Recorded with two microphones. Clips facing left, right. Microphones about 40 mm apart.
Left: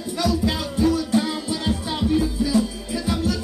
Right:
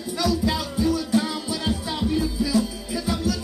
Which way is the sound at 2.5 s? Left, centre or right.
Left.